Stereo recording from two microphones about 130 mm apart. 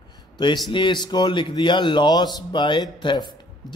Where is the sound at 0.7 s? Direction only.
40° left (ahead or behind).